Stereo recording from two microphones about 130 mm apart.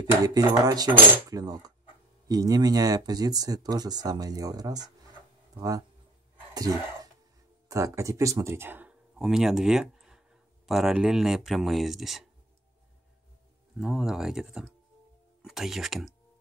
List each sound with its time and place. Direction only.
0.2 s speech: 30° right (ahead or behind); by 12.3 s centre (ahead or behind)
13.7 s speech: 5° right (ahead or behind)